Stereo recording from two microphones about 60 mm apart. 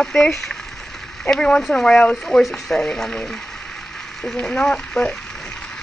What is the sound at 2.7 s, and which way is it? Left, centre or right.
Speech, centre.